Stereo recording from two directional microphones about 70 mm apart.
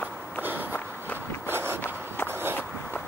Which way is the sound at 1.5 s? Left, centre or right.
Right.